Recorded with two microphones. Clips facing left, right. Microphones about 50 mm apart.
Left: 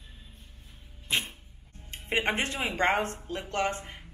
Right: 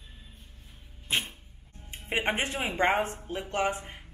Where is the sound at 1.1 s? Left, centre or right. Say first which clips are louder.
Even; right.